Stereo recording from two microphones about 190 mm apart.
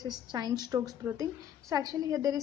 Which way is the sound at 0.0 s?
20° right (ahead or behind).